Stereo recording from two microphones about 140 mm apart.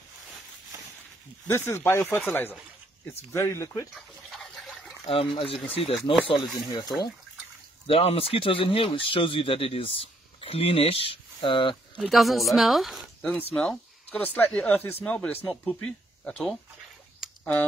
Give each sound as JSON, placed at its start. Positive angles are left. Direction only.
{"t": 1.5, "sound": "speech", "side_deg": 15}
{"t": 3.3, "sound": "speech", "side_deg": 20}
{"t": 3.9, "sound": "dog", "side_deg": 0}
{"t": 5.0, "sound": "speech", "side_deg": 40}
{"t": 7.8, "sound": "speech", "side_deg": 45}
{"t": 12.0, "sound": "speech", "side_deg": 0}
{"t": 17.2, "sound": "a sound", "side_deg": 0}